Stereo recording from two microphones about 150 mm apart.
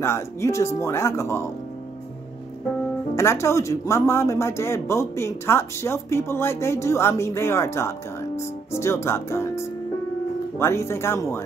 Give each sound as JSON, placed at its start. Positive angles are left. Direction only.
{"t": 0.0, "sound": "speech", "side_deg": 20}
{"t": 3.2, "sound": "speech", "side_deg": 20}